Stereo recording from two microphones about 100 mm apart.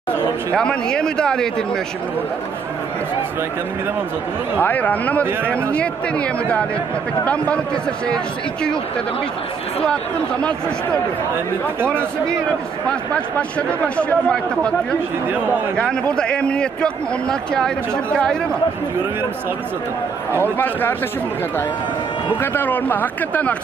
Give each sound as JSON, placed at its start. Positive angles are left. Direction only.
{"t": 0.6, "sound": "a man's voice", "side_deg": 5}
{"t": 4.6, "sound": "a man's voice", "side_deg": 15}
{"t": 11.8, "sound": "speech", "side_deg": -20}
{"t": 13.1, "sound": "a man's voice", "side_deg": 10}
{"t": 15.3, "sound": "speech", "side_deg": -15}
{"t": 15.7, "sound": "a man's voice", "side_deg": 10}
{"t": 20.5, "sound": "speech", "side_deg": 20}
{"t": 22.4, "sound": "speech", "side_deg": 20}